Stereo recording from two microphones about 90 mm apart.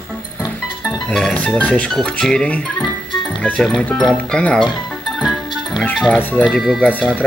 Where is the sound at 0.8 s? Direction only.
10° left (ahead or behind).